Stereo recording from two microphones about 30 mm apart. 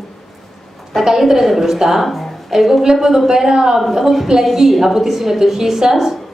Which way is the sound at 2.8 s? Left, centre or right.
Centre.